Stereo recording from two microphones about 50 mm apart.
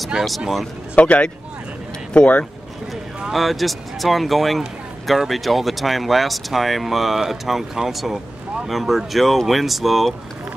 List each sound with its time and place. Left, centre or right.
0.9 s speech: left
3.3 s speech: centre